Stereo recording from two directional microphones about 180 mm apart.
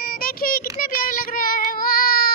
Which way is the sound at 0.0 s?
55° left (ahead or behind).